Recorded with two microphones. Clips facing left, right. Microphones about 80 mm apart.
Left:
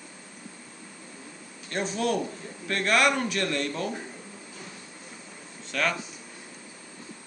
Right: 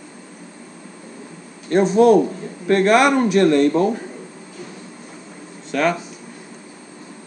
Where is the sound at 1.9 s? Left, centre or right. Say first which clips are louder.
Right 16 dB; right.